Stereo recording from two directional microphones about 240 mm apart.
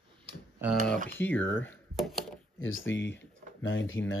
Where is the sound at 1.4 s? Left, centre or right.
Left.